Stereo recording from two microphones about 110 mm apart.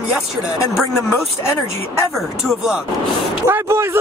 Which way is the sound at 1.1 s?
25° left (ahead or behind).